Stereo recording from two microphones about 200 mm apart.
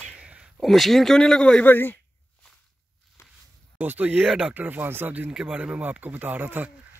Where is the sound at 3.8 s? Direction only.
10° right (ahead or behind).